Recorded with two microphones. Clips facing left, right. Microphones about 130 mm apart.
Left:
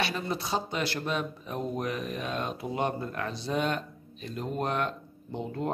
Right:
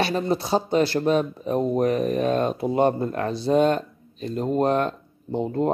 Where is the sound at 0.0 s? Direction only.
35° right (ahead or behind).